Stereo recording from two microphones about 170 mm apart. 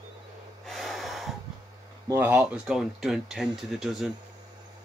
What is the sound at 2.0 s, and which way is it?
Speech, 10° right (ahead or behind).